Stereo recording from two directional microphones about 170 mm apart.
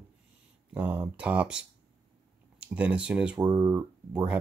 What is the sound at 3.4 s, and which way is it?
Speech, 20° right (ahead or behind).